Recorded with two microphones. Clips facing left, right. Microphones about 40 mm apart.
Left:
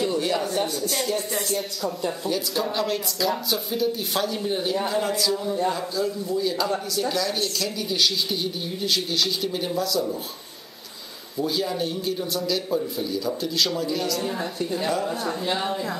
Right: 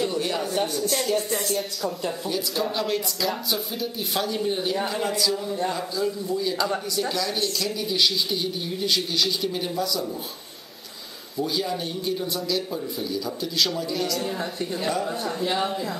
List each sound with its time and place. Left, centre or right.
0.0 s a sound: centre
0.7 s speech: centre
1.0 s speech: centre
11.4 s speech: centre